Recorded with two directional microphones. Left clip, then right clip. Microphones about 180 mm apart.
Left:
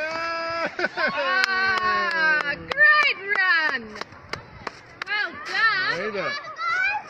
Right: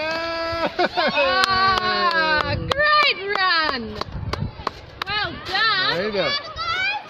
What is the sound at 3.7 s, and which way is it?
Chop, 50° right (ahead or behind).